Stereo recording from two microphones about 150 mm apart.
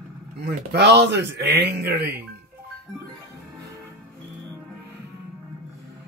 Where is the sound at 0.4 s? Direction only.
90° right.